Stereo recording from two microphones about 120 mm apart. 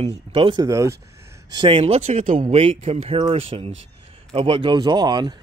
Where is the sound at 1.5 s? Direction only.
40° right (ahead or behind).